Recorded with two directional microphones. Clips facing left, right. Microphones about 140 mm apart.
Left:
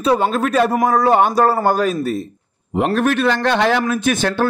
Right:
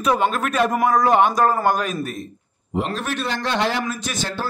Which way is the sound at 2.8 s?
60° left (ahead or behind).